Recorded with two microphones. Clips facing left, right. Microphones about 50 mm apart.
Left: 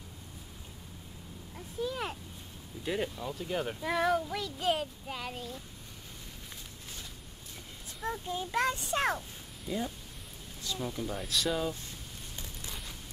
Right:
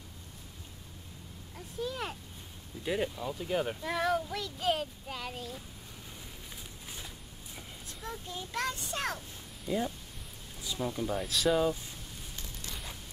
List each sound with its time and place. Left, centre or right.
1.8 s a sound: centre
2.8 s speech: centre
8.0 s a child's voice: centre
9.7 s speech: centre